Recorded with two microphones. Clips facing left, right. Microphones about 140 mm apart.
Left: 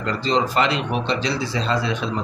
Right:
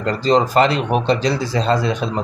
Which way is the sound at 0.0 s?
40° right (ahead or behind).